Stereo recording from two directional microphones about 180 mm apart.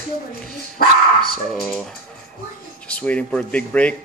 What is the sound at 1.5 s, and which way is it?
Speech, 5° left (ahead or behind).